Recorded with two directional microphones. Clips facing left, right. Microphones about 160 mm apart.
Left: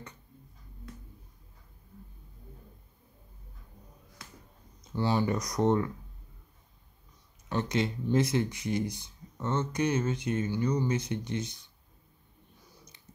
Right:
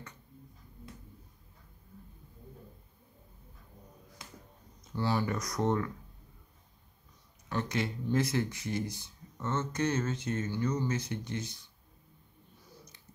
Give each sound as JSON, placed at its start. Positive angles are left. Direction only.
{"t": 4.9, "sound": "speech", "side_deg": 20}
{"t": 7.4, "sound": "speech", "side_deg": 20}